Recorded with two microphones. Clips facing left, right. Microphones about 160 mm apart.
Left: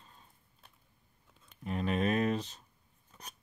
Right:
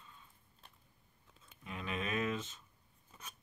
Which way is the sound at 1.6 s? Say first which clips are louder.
Left 9 dB; 40° left (ahead or behind).